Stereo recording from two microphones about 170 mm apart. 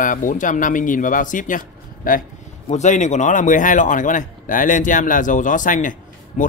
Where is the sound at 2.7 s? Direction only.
45° left (ahead or behind).